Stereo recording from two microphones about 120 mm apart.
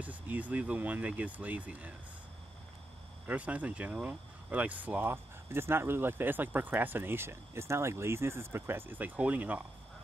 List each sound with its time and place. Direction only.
0.0 s speech: 15° right (ahead or behind)
3.3 s speech: 10° right (ahead or behind)